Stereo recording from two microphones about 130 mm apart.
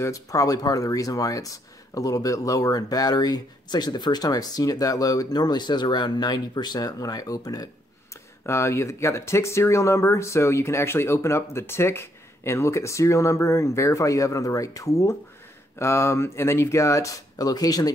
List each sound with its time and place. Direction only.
0.0 s speech: 25° left (ahead or behind)